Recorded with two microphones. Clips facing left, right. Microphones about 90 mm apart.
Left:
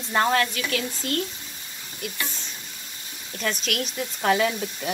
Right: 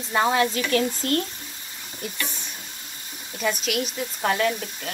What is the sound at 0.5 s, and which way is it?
Speech, 35° right (ahead or behind).